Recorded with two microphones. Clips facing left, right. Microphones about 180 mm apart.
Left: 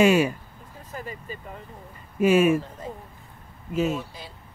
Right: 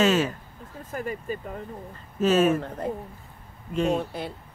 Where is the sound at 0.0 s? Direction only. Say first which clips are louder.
Left 3 dB; 10° left (ahead or behind).